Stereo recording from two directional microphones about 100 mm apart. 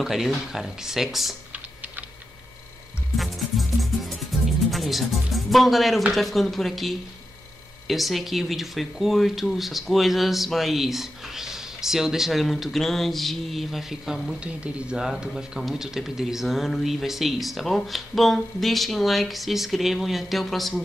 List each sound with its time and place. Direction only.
0.0 s speech: 5° right (ahead or behind)
1.5 s typing: 15° right (ahead or behind)
3.2 s music: centre (ahead or behind)
6.1 s speech: centre (ahead or behind)